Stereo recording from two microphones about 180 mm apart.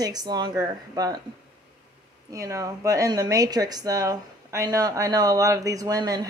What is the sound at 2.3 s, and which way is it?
A woman's voice, 20° right (ahead or behind).